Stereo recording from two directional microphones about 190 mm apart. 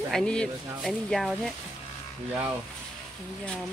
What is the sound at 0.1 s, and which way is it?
Speech, 5° left (ahead or behind).